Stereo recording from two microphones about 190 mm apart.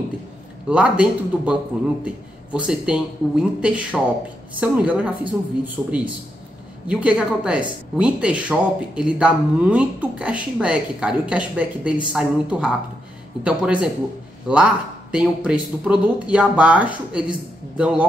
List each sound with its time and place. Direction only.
0.7 s speech: 5° right (ahead or behind)